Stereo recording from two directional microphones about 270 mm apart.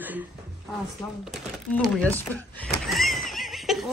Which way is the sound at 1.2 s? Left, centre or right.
Centre.